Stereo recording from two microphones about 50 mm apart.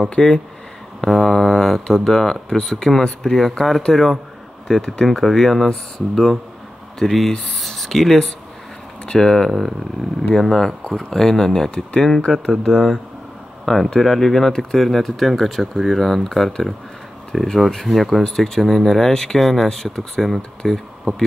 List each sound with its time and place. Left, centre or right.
0.1 s speech: left
1.0 s speech: centre